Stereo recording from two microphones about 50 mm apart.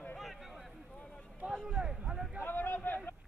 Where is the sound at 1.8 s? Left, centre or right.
Centre.